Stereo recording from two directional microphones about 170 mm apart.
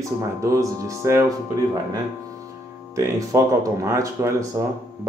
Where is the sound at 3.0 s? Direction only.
20° right (ahead or behind).